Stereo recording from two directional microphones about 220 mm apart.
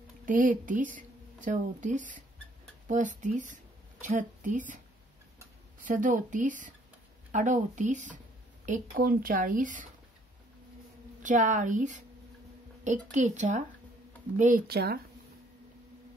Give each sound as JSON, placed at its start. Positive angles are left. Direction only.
{"t": 0.2, "sound": "a woman's voice", "side_deg": -35}
{"t": 5.9, "sound": "a woman's voice", "side_deg": -35}
{"t": 11.2, "sound": "a woman's voice", "side_deg": -35}